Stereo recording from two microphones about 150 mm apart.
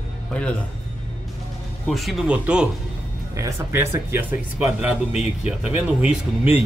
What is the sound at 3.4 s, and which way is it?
Speech, 20° right (ahead or behind).